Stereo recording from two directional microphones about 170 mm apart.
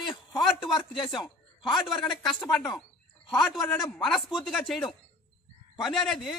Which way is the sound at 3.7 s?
Centre (ahead or behind).